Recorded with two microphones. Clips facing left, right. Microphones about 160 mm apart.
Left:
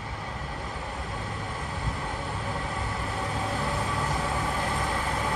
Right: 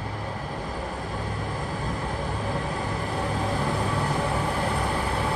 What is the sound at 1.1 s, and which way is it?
Vehicle, 40° right (ahead or behind).